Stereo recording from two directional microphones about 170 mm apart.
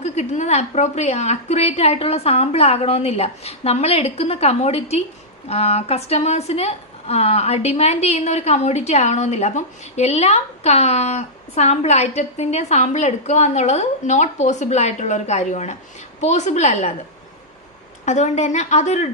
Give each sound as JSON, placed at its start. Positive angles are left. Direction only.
{"t": 0.0, "sound": "a woman's voice", "side_deg": 40}
{"t": 18.0, "sound": "a woman's voice", "side_deg": 45}